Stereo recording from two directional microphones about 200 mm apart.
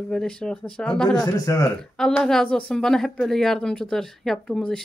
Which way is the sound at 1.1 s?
20° left (ahead or behind).